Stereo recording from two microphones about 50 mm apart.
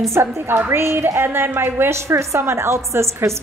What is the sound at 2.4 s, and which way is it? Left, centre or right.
Speech, right.